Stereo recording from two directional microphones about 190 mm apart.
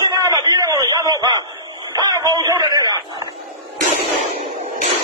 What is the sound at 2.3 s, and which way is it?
Speech, 20° right (ahead or behind).